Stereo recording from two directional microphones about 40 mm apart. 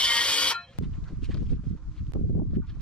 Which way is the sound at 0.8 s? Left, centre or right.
Centre.